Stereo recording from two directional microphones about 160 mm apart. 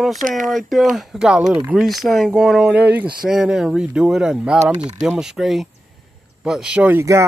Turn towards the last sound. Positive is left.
turn(degrees=-15)  # may be behind; listen again after turning